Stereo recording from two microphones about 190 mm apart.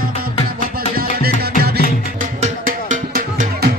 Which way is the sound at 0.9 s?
50° right (ahead or behind).